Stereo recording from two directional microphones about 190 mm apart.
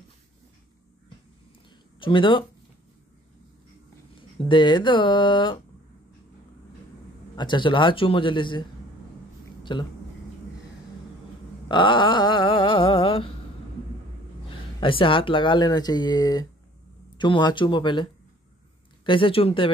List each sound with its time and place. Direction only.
2.0 s speech: 25° left (ahead or behind)
4.5 s speech: 25° left (ahead or behind)
7.3 s speech: 25° left (ahead or behind)
9.6 s a sound: 25° left (ahead or behind)
11.7 s speech: 25° left (ahead or behind)
14.8 s speech: 25° left (ahead or behind)
19.0 s speech: 25° left (ahead or behind)